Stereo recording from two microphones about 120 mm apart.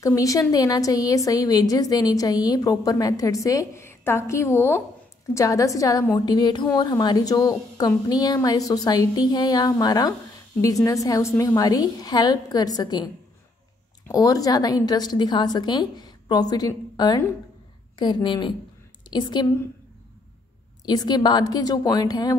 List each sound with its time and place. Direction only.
0.0 s a woman's voice: 30° left (ahead or behind)
14.1 s a woman's voice: 30° left (ahead or behind)
20.8 s a woman's voice: 35° left (ahead or behind)